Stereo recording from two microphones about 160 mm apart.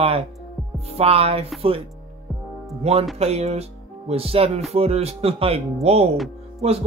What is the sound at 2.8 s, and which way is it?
Speech, 40° right (ahead or behind).